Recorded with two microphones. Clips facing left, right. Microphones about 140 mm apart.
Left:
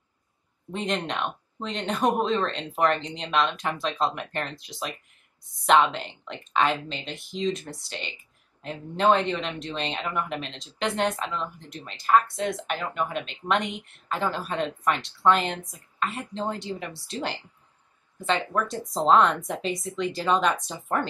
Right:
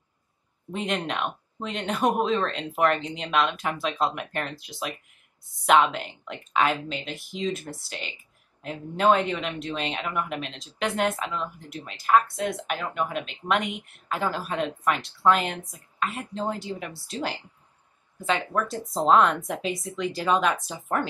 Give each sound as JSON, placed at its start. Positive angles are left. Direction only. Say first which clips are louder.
{"t": 0.7, "sound": "speech", "louder": "even", "side_deg": -5}